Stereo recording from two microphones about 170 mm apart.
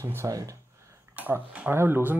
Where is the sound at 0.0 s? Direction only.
15° right (ahead or behind).